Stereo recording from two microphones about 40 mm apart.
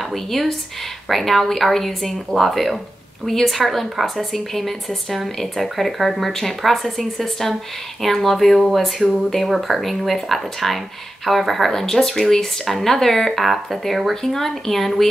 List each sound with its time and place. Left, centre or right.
0.1 s a woman's voice: centre